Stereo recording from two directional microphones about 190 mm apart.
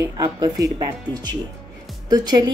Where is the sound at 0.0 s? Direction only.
15° right (ahead or behind).